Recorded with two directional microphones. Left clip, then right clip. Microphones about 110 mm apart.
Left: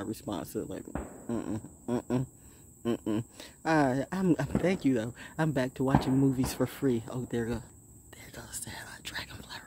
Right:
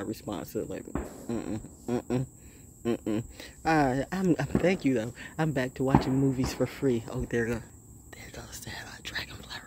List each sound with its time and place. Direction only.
0.0 s speech: 35° left (ahead or behind)
7.0 s speech: 30° left (ahead or behind)
8.1 s whispering: 25° left (ahead or behind)